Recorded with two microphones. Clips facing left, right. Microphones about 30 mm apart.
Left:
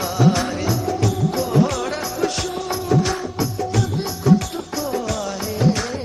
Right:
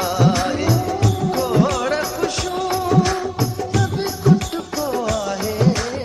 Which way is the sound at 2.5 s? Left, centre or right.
Right.